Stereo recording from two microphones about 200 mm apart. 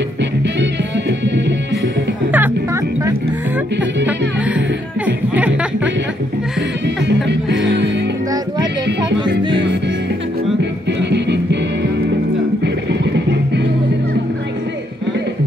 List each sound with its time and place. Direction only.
0.2 s music: 60° right (ahead or behind)
2.3 s music: 10° right (ahead or behind)
5.0 s a sound: 10° right (ahead or behind)
7.1 s music: 60° right (ahead or behind)
10.6 s music: 60° right (ahead or behind)
12.6 s music: 60° right (ahead or behind)